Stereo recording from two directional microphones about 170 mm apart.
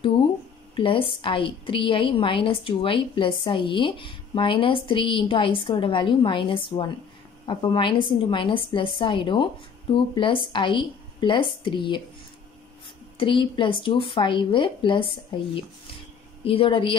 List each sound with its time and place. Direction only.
0.7 s a woman's voice: 30° left (ahead or behind)
13.2 s a woman's voice: 30° left (ahead or behind)
16.4 s a woman's voice: 30° left (ahead or behind)